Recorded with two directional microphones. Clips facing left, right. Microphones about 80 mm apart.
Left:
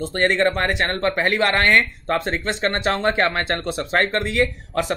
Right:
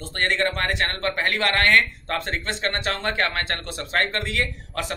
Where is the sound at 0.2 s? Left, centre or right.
Left.